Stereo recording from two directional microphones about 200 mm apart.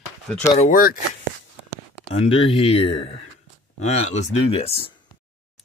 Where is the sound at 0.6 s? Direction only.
45° left (ahead or behind).